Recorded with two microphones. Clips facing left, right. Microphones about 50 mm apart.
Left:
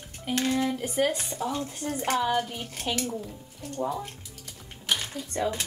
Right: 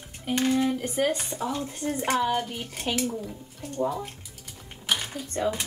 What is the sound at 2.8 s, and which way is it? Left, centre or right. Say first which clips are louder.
Speech: right 2 dB; centre.